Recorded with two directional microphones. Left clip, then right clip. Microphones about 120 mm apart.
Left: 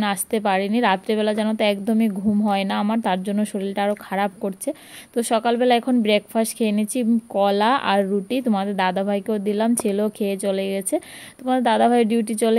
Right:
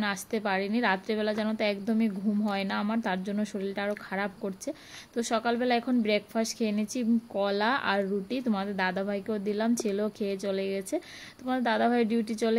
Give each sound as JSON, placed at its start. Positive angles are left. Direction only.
{"t": 0.0, "sound": "a woman's voice", "side_deg": 30}